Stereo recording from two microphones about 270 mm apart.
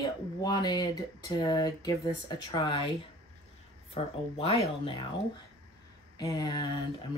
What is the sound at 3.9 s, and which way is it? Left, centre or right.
Speech, left.